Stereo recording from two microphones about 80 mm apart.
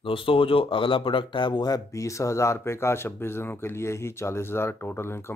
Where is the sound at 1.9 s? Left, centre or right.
Left.